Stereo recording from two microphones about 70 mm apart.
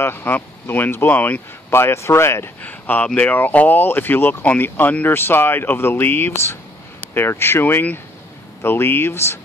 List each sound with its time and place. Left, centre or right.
0.0 s speech: left
1.7 s speech: left
2.6 s speech: left